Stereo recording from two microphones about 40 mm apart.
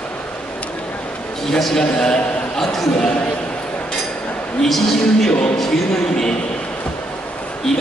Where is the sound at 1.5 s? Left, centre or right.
Centre.